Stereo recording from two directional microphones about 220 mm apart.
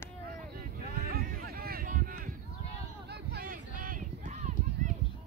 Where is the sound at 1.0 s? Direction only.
45° right (ahead or behind).